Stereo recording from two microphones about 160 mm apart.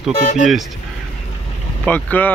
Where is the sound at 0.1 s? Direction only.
50° left (ahead or behind).